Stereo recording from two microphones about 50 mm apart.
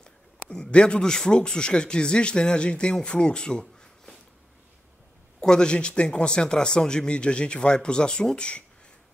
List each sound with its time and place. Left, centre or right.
0.0 s a man's voice: centre
5.4 s speech: centre